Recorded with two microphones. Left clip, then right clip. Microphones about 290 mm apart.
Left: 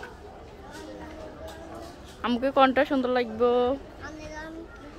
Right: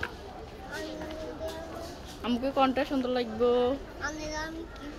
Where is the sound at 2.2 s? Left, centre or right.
Centre.